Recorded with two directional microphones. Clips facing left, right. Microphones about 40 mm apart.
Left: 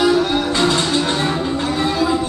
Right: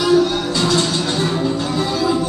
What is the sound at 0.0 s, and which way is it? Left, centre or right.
Music, left.